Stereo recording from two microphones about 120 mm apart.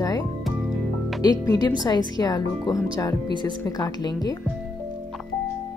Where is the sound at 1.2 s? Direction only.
30° left (ahead or behind).